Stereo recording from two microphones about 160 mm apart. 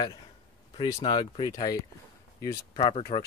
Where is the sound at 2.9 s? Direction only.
40° left (ahead or behind).